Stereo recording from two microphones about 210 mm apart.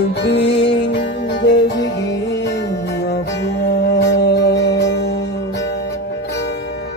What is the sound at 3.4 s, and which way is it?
Music, 55° left (ahead or behind).